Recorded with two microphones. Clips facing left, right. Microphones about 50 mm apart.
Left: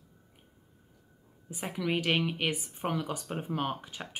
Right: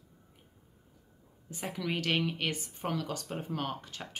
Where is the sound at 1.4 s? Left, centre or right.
Centre.